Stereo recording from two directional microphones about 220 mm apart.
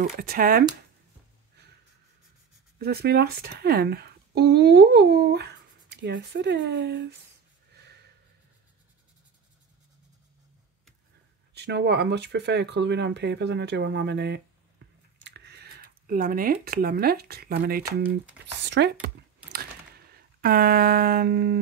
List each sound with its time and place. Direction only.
0.0 s speech: 40° right (ahead or behind)
2.8 s speech: 45° right (ahead or behind)
7.7 s snort: 50° right (ahead or behind)
11.5 s speech: 50° right (ahead or behind)
18.7 s computer keyboard: 50° right (ahead or behind)